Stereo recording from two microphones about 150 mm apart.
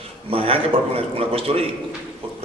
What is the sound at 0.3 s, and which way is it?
A man's voice, 40° right (ahead or behind).